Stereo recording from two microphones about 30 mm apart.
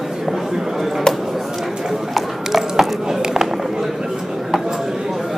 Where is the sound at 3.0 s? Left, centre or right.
Centre.